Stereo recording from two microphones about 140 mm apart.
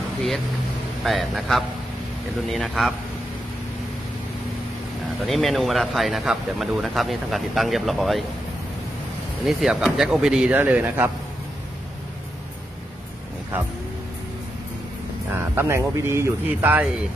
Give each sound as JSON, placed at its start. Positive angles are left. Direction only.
{"t": 1.0, "sound": "speech", "side_deg": 0}
{"t": 5.2, "sound": "speech", "side_deg": 0}
{"t": 9.5, "sound": "speech", "side_deg": -5}
{"t": 15.3, "sound": "speech", "side_deg": -15}